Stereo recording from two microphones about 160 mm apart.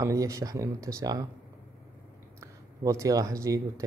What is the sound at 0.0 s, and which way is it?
Speech, 20° right (ahead or behind).